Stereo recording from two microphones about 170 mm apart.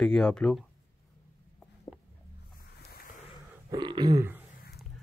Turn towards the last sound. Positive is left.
turn(degrees=-25)  # may be behind; listen again after turning